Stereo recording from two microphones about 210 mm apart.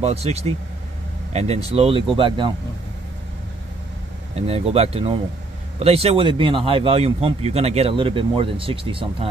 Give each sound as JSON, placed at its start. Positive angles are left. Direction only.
{"t": 0.0, "sound": "speech", "side_deg": -30}
{"t": 4.4, "sound": "speech", "side_deg": -30}